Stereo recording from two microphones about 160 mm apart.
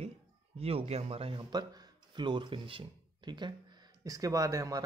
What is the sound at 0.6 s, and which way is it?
Speech, 40° right (ahead or behind).